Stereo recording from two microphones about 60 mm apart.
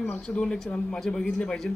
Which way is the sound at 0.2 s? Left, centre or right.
Centre.